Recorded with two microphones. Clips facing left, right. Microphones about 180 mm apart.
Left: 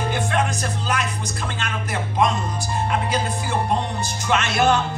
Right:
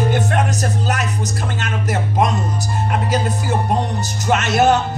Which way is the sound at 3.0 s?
40° right (ahead or behind).